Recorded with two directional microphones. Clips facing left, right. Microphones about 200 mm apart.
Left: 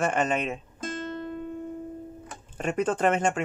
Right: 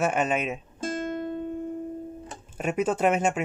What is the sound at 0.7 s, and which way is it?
Music, 30° right (ahead or behind).